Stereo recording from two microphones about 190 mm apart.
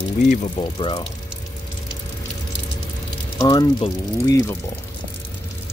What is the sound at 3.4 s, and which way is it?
Speech, 20° left (ahead or behind).